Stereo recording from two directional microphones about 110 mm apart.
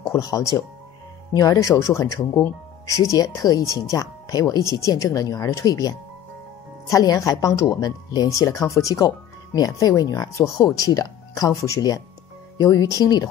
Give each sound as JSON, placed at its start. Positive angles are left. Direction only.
{"t": 0.1, "sound": "a woman's voice", "side_deg": 30}